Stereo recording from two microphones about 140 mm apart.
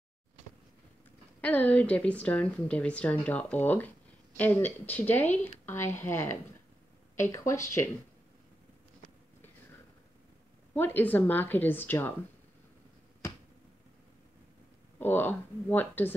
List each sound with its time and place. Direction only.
1.4 s a woman's voice: 10° left (ahead or behind)
10.7 s a woman's voice: 15° left (ahead or behind)
15.0 s a woman's voice: 15° left (ahead or behind)